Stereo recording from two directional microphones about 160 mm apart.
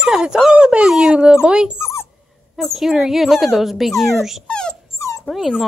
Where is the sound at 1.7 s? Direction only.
15° left (ahead or behind).